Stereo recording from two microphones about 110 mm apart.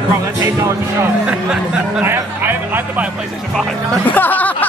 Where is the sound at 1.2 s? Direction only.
5° right (ahead or behind).